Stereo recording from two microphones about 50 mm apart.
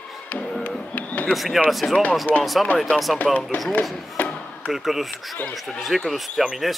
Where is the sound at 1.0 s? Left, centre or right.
Left.